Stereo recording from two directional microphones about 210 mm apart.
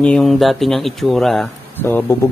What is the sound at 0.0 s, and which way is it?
Speech, 5° left (ahead or behind).